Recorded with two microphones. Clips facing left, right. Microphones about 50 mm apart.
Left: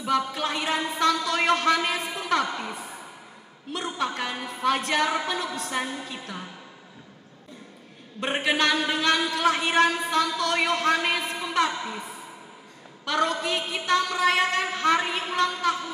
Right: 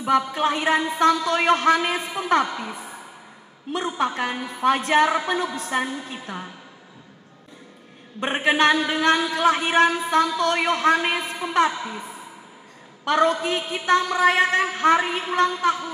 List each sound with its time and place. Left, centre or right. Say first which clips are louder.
0.2 s a woman's voice: right 5 dB; right
1.1 s a woman's voice: right 3 dB; centre
2.4 s a woman's voice: right 2 dB; centre
2.7 s a woman's voice: right 1 dB; right
4.0 s a woman's voice: right 4 dB; right
8.2 s a woman's voice: right 5 dB; right
11.7 s a woman's voice: right 1 dB; centre
13.0 s a woman's voice: right 5 dB; right